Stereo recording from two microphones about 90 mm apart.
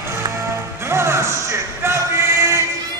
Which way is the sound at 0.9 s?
30° right (ahead or behind).